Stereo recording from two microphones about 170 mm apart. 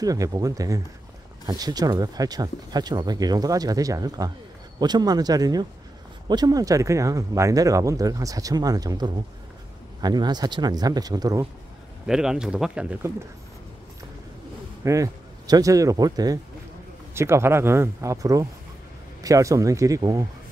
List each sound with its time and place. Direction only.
0.0 s speech: 20° right (ahead or behind)
12.1 s speech: 5° right (ahead or behind)
14.9 s speech: 20° right (ahead or behind)